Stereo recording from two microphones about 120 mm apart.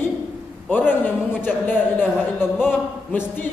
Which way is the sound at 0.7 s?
15° left (ahead or behind).